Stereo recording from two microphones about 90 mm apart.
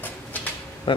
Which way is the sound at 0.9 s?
75° left (ahead or behind).